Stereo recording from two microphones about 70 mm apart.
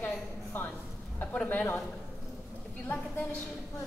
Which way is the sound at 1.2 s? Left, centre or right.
Left.